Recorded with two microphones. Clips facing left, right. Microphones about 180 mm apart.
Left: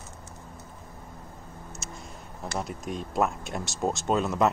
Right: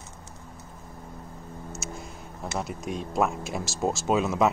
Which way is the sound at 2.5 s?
Centre (ahead or behind).